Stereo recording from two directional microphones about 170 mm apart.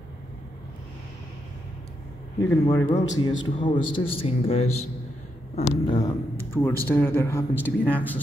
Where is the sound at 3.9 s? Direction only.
30° left (ahead or behind).